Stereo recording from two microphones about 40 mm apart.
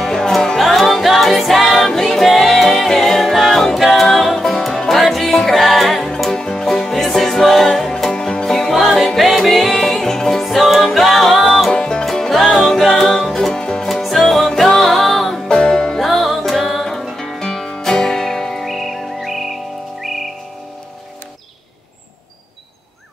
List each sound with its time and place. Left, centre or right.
0.0 s music: centre
0.6 s music: centre
6.3 s music: centre
11.7 s music: left
12.0 s music: centre
13.5 s music: centre
14.0 s music: centre
15.4 s music: centre
16.0 s music: centre